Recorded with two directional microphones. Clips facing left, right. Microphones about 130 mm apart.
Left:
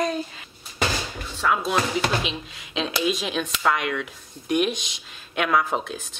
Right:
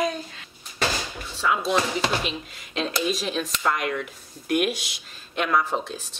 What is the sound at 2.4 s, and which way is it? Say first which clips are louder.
Speech: even; 45° right (ahead or behind).